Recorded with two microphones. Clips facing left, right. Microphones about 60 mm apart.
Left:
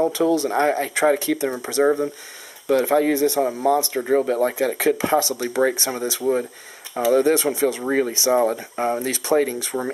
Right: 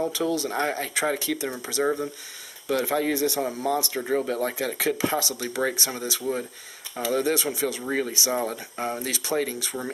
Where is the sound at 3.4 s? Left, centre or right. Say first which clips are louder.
Left 7 dB; left.